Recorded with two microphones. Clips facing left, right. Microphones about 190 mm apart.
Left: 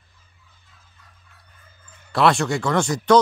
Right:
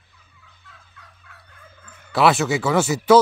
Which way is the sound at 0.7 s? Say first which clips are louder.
Right 8 dB; 80° right.